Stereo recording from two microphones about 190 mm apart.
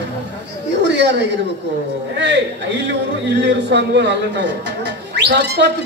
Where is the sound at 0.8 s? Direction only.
65° right (ahead or behind).